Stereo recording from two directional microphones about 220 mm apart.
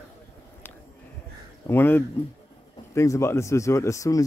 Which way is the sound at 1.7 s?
10° left (ahead or behind).